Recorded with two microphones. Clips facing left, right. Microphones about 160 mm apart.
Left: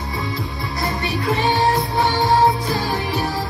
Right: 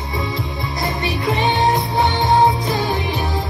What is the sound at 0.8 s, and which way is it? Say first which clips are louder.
Music: even; 20° right (ahead or behind).